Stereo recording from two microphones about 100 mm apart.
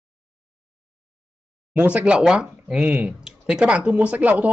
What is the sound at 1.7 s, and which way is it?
Speech, 15° right (ahead or behind).